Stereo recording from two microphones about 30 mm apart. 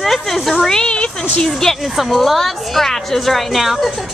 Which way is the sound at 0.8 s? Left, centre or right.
Left.